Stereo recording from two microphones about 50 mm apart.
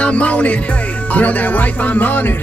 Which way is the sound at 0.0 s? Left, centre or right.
Left.